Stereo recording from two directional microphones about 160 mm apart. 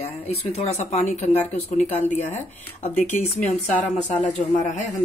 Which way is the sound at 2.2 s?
10° left (ahead or behind).